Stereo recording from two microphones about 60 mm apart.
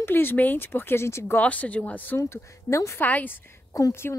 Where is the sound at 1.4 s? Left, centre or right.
Left.